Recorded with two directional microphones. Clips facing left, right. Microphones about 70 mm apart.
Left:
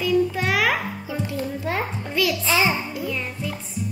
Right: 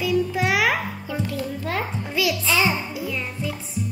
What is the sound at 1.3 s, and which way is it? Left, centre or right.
A child's voice, centre.